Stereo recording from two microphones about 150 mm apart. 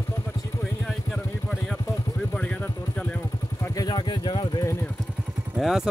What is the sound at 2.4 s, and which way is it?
Vehicle, 10° left (ahead or behind).